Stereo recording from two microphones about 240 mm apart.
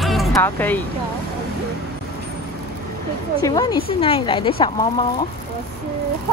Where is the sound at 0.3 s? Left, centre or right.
Centre.